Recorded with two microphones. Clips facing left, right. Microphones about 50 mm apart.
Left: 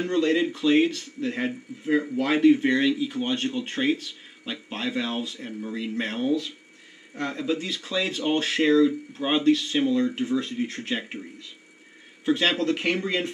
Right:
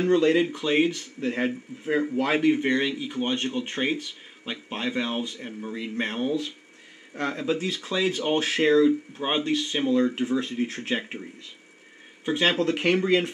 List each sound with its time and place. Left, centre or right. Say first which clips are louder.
0.0 s speech: right 2 dB; centre
7.6 s speech: right 3 dB; right
7.9 s speech: right 1 dB; centre
12.3 s speech: even; right
12.9 s speech: right 5 dB; centre